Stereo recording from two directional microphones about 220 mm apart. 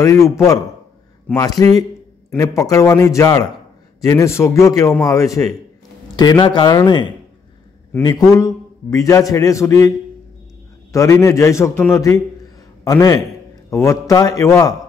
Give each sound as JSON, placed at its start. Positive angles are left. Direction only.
{"t": 0.0, "sound": "a man's voice", "side_deg": 15}